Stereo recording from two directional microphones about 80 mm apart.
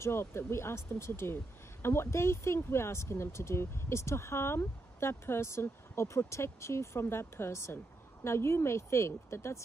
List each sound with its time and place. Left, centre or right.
0.0 s speech: left